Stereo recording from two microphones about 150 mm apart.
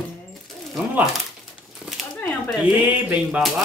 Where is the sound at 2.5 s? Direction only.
5° right (ahead or behind).